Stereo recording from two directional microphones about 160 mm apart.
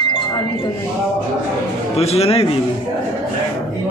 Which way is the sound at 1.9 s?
40° left (ahead or behind).